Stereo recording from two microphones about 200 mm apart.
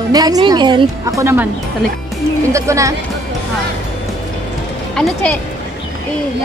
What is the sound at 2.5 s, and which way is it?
Speech, 15° right (ahead or behind).